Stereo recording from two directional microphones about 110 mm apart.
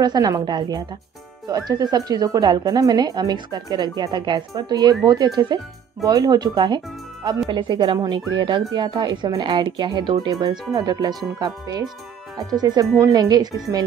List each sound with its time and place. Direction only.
0.0 s a woman's voice: 35° right (ahead or behind)